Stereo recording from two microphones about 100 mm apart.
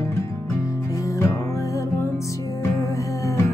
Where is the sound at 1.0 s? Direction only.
35° left (ahead or behind).